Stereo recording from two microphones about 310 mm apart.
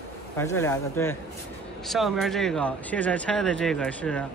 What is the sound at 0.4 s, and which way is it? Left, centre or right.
Speech, centre.